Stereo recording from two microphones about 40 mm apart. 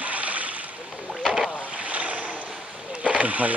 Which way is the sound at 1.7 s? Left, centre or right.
Right.